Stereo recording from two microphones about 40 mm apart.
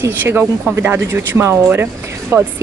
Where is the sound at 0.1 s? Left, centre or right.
Right.